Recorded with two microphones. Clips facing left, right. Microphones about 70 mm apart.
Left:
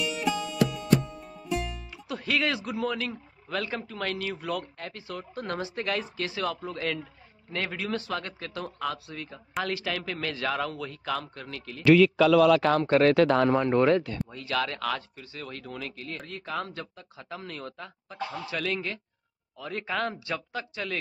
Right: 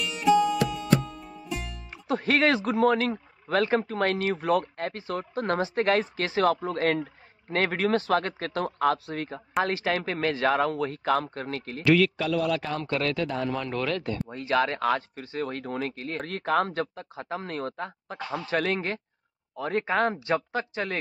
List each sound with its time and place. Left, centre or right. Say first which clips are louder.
0.0 s music: right 7 dB; centre
2.0 s speech: right 5 dB; right
9.6 s speech: right 5 dB; right
12.8 s speech: left 7 dB; left
13.1 s speech: left 8 dB; left
13.5 s speech: left 7 dB; left
14.0 s speech: right 4 dB; right
16.2 s speech: right 10 dB; right